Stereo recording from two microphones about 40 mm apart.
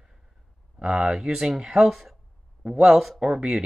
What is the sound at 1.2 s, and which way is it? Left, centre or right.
Speech, centre.